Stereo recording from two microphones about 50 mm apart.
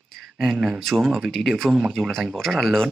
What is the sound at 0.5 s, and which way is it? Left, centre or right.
Speech, centre.